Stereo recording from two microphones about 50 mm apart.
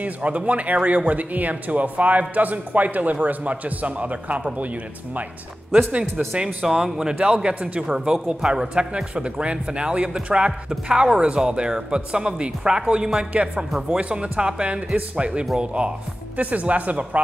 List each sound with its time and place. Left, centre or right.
0.0 s speech: right
5.8 s a man's voice: right
8.9 s a man's voice: right